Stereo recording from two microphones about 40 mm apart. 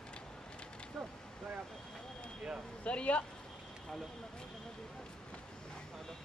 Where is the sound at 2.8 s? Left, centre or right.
Left.